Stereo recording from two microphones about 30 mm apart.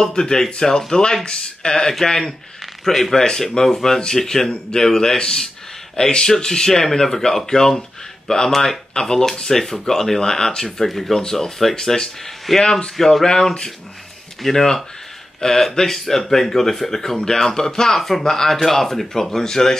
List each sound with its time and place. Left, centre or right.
0.0 s speech: left
1.7 s speech: centre
9.5 s speech: centre
10.9 s speech: centre
11.7 s speech: left
12.5 s speech: centre
13.2 s speech: left
14.5 s speech: centre